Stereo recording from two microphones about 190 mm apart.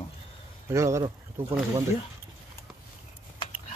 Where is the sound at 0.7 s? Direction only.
15° right (ahead or behind).